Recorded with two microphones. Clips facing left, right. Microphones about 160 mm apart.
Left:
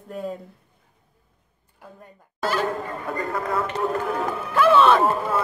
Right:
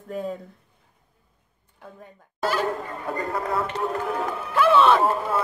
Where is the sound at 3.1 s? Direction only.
30° right (ahead or behind).